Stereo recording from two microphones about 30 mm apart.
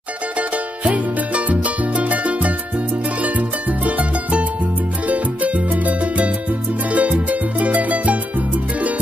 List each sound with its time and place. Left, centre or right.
0.9 s music: right